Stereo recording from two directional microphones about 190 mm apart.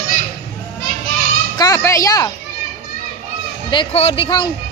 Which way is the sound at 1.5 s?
20° left (ahead or behind).